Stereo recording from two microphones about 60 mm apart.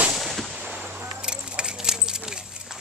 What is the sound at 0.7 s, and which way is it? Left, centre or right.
Gunshot, right.